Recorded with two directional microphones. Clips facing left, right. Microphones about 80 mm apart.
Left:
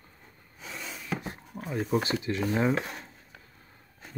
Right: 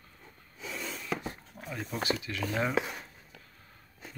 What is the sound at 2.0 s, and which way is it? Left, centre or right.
Speech, left.